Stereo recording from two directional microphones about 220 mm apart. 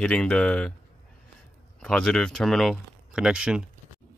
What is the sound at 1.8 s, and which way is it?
Speech, 5° left (ahead or behind).